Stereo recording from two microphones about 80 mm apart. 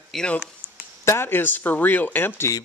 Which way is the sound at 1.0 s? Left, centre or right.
Left.